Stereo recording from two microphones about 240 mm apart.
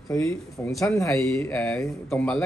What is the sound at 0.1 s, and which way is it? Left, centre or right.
Speech, centre.